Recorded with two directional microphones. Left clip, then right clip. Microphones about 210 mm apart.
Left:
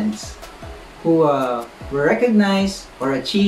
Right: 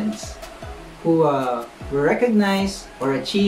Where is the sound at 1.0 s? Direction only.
5° left (ahead or behind).